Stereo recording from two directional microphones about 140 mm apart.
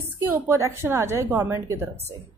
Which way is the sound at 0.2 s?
15° right (ahead or behind).